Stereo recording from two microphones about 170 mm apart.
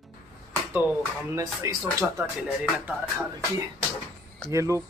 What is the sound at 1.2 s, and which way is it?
Speech, 15° right (ahead or behind).